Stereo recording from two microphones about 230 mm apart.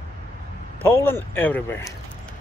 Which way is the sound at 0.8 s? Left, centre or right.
Centre.